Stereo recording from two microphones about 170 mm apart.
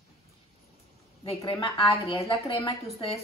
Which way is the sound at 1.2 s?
30° left (ahead or behind).